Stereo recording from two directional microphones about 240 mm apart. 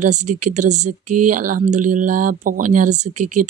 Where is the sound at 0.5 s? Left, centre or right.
Right.